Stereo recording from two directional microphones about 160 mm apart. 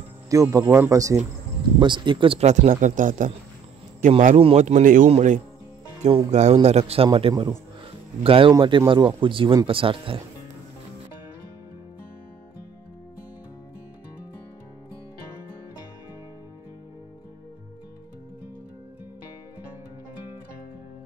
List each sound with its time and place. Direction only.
0.3 s speech: 20° right (ahead or behind); by 2.7 s 40° right (ahead or behind)
2.7 s speech: 55° right (ahead or behind)
4.4 s speech: 40° right (ahead or behind)
6.0 s speech: 40° right (ahead or behind)